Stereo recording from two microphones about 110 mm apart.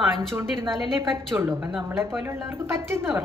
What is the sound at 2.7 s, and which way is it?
Speech, 25° right (ahead or behind).